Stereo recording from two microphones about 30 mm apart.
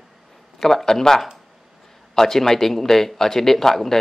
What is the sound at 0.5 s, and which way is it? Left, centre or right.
Speech, centre.